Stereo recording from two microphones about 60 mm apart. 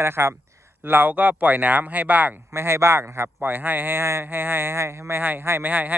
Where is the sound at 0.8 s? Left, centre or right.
Right.